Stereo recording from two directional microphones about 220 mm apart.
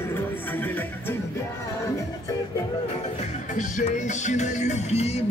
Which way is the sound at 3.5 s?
35° left (ahead or behind).